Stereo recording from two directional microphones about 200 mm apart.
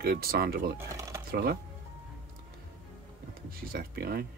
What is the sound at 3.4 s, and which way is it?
Speech, 45° right (ahead or behind).